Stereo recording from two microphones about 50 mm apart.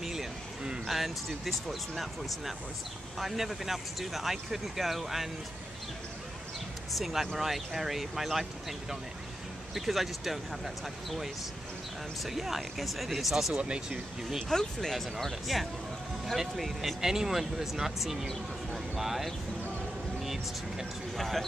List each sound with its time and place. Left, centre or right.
0.0 s speech: centre
6.9 s speech: centre
9.8 s speech: centre
13.6 s speech: centre
14.5 s speech: centre
18.7 s a sound: centre
21.2 s speech: centre